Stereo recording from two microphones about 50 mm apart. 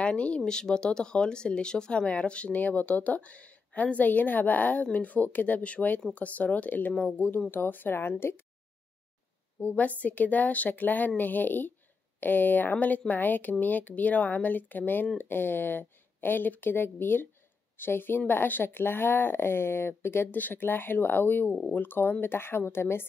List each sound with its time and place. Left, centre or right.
0.0 s a woman's voice: left
9.6 s a woman's voice: left